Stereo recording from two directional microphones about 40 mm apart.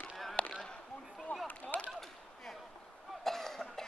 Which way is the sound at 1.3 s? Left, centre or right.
Left.